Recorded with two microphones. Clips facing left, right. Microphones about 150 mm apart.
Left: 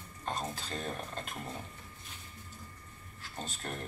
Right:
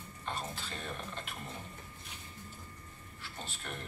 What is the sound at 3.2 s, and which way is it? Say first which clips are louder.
Speech: left 4 dB; 40° left (ahead or behind).